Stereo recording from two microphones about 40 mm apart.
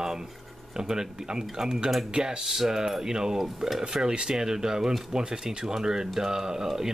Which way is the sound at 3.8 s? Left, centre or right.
Centre.